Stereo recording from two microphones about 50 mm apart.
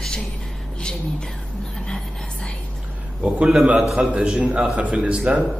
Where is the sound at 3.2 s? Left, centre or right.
Centre.